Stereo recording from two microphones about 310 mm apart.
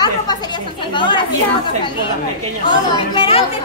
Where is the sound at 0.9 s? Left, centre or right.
Centre.